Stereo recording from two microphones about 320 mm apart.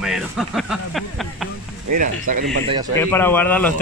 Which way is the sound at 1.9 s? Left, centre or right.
Right.